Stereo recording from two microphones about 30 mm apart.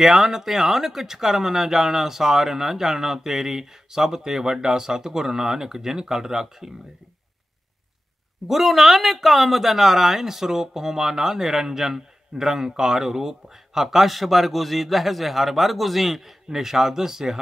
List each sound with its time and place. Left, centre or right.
0.0 s speech: centre
8.5 s speech: centre